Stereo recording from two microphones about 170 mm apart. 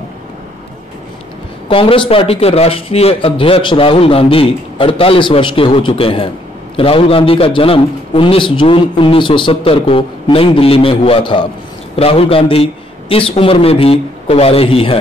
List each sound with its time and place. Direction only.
1.7 s speech: 30° left (ahead or behind)